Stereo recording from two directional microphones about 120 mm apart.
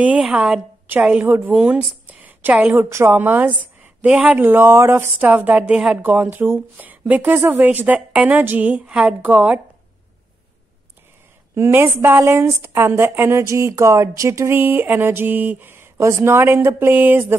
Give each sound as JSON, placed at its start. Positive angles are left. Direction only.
{"t": 0.0, "sound": "a woman's voice", "side_deg": -10}
{"t": 2.7, "sound": "speech", "side_deg": -25}
{"t": 11.5, "sound": "a woman's voice", "side_deg": -20}